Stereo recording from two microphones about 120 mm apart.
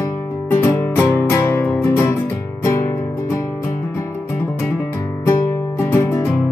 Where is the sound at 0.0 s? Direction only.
25° left (ahead or behind).